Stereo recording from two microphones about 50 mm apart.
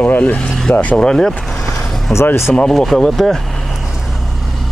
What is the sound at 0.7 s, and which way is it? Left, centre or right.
Speech, left.